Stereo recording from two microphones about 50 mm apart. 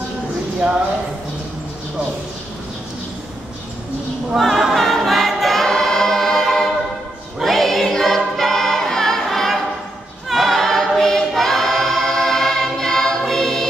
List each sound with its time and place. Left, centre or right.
0.6 s speech: centre
4.4 s choir: centre